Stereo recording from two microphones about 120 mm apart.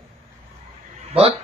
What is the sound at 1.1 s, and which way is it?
Speech, 55° right (ahead or behind).